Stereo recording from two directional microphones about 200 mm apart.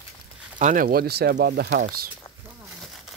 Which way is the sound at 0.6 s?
40° right (ahead or behind).